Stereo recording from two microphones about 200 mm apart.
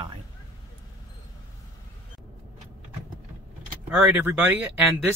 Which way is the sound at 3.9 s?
5° right (ahead or behind).